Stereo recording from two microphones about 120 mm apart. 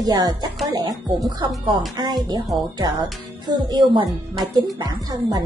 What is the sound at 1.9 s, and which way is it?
Speech, 35° right (ahead or behind).